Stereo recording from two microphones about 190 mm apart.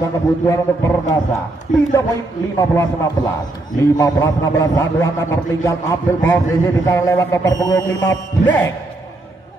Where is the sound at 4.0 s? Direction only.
20° left (ahead or behind).